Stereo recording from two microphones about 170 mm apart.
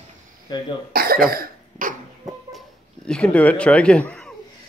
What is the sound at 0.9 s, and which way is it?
Cough, 60° right (ahead or behind).